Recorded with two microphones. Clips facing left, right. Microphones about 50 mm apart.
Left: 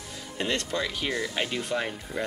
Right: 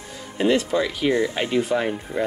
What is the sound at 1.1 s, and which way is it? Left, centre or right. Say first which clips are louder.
Speech: right 9 dB; right.